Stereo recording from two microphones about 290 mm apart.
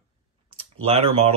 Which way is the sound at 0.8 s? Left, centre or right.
Right.